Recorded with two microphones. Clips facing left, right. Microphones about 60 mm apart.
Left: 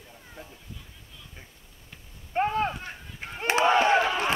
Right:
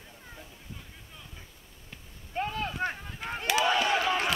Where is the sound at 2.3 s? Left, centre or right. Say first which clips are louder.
Left 7 dB; left.